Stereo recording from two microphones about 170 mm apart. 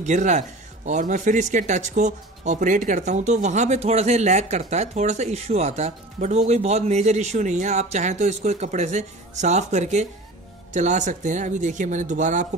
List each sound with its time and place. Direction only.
0.0 s speech: 45° right (ahead or behind)